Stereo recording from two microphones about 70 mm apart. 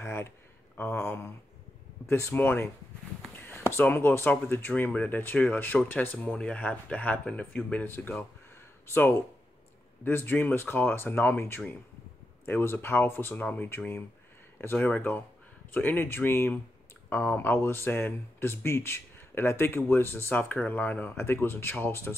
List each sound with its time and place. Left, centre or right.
0.0 s a sound: left
2.0 s speech: left
2.3 s speech: left
7.8 s speech: left